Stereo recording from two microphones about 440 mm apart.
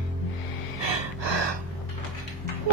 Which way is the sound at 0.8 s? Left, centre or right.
Right.